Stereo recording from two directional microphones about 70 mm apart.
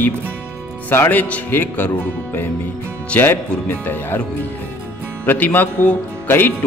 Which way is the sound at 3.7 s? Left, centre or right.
Left.